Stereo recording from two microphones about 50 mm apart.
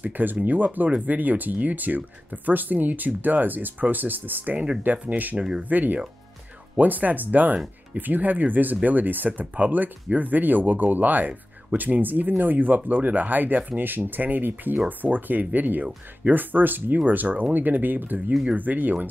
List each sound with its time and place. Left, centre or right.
0.0 s speech: right